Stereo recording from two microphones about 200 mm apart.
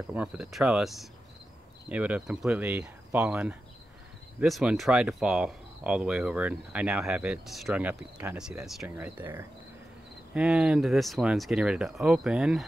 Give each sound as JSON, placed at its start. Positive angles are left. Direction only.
{"t": 0.1, "sound": "speech", "side_deg": -5}